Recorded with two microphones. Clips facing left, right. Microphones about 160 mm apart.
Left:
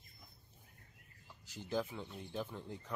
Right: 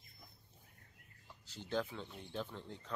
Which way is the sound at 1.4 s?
10° left (ahead or behind).